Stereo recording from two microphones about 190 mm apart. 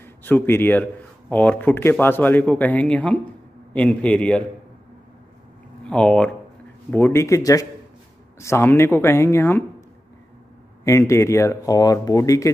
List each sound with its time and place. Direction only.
0.0 s a man's voice: 10° left (ahead or behind)
5.9 s speech: 5° left (ahead or behind)
10.8 s speech: 15° left (ahead or behind)